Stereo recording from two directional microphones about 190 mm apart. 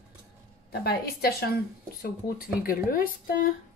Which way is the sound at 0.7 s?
55° left (ahead or behind).